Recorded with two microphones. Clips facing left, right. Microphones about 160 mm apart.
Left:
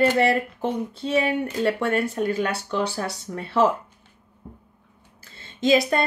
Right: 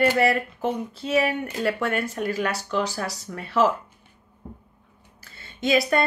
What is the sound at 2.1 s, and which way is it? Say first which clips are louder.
Speech: left 2 dB; 30° left (ahead or behind).